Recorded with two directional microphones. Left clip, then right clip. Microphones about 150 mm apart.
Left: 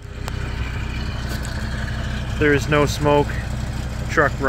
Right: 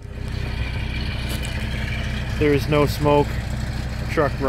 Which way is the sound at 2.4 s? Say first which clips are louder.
Left 2 dB; 10° right (ahead or behind).